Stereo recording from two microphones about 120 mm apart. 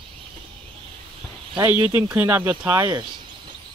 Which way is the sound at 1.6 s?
15° right (ahead or behind).